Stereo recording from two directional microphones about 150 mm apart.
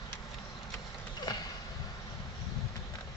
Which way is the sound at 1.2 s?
25° left (ahead or behind).